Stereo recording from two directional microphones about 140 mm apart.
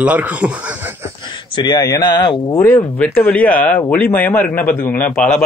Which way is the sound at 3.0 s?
10° left (ahead or behind).